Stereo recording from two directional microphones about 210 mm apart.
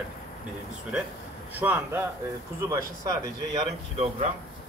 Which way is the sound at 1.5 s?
10° right (ahead or behind).